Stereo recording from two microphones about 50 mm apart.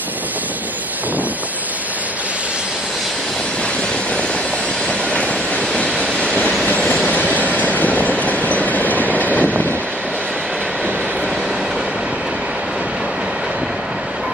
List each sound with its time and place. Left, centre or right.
5.9 s vehicle: centre